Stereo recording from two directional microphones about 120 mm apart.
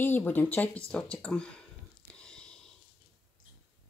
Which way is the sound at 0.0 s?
15° left (ahead or behind).